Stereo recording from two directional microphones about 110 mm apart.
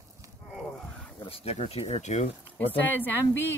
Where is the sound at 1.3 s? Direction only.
65° left (ahead or behind); by 2.2 s 90° left.